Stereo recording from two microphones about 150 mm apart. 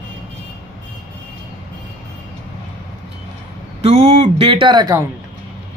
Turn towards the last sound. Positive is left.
turn(degrees=-30)  # may be behind; listen again after turning